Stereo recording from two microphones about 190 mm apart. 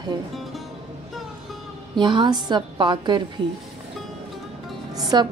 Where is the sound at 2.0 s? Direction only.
25° right (ahead or behind).